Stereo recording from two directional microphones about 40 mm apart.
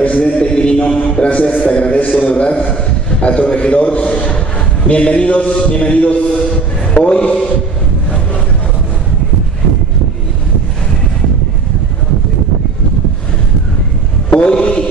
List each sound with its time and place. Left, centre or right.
0.0 s mantra: left
1.0 s a man's voice: left
1.7 s mantra: left
2.7 s a man's voice: left
6.5 s music: left
14.3 s a sound: left